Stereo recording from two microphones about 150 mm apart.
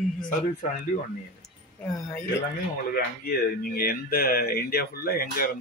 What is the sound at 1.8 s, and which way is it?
Speech, 15° left (ahead or behind).